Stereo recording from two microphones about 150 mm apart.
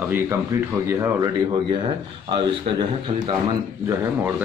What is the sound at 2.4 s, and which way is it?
Speech, 30° right (ahead or behind).